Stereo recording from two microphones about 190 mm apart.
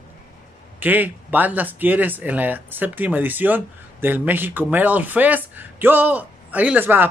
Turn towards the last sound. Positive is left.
turn(degrees=-10)  # may be behind; listen again after turning